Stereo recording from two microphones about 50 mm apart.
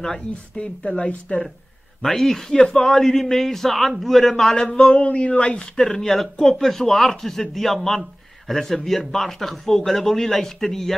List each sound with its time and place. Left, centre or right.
0.6 s speech: left
2.0 s a man's voice: centre
4.6 s speech: centre
5.8 s speech: centre